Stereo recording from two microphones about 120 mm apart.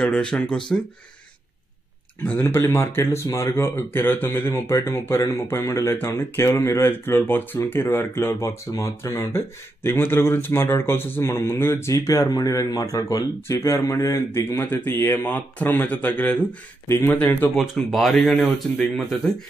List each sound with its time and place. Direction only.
0.0 s speech: 5° left (ahead or behind)
2.2 s speech: 20° left (ahead or behind)
17.6 s speech: centre (ahead or behind)